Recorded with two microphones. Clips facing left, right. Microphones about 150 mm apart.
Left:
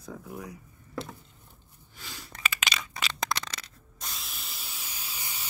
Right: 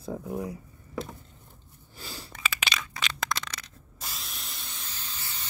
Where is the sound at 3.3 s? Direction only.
25° left (ahead or behind).